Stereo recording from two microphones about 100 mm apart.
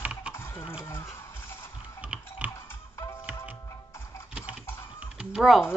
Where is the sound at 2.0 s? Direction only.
15° right (ahead or behind).